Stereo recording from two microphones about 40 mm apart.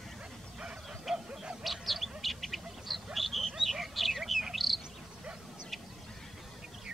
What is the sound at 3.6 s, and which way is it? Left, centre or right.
Fowl, centre.